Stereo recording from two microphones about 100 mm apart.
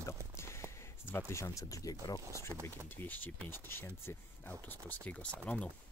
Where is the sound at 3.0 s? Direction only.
20° left (ahead or behind).